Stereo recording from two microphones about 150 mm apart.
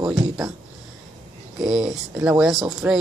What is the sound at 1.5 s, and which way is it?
A woman's voice, 5° right (ahead or behind).